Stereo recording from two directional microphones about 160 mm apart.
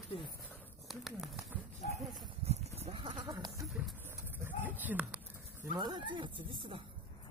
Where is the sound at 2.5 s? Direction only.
40° right (ahead or behind); by 3.7 s 25° right (ahead or behind).